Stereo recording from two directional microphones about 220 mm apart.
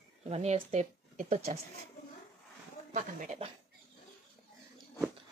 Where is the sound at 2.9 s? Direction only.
35° right (ahead or behind).